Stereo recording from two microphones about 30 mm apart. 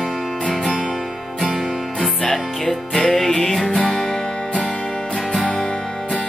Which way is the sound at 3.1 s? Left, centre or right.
Centre.